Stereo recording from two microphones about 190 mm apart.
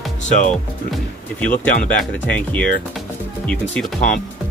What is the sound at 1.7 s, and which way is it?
Speech, 40° left (ahead or behind).